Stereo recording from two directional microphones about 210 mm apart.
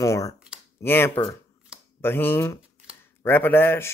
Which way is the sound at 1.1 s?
20° left (ahead or behind).